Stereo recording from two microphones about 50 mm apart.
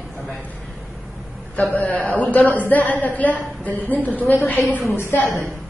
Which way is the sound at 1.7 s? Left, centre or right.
Left.